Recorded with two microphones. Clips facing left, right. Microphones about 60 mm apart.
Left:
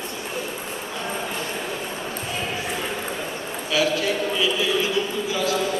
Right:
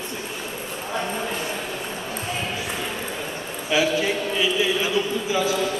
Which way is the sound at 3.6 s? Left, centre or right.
Right.